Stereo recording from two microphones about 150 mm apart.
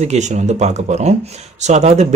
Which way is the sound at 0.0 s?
50° right (ahead or behind).